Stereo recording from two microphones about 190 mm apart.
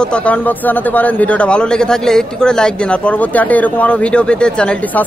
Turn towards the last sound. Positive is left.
turn(degrees=5)  # may be behind; listen again after turning